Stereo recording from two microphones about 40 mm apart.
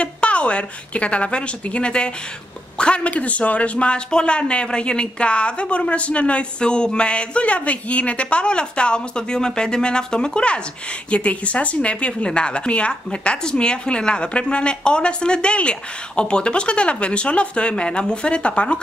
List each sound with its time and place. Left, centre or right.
0.0 s a woman's voice: left